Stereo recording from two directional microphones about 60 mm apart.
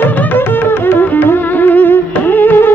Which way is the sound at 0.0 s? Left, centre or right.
Left.